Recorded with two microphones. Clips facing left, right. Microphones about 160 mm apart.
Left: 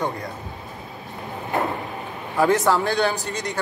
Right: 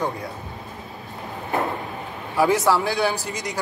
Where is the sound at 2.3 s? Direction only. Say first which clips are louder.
Even; 5° right (ahead or behind).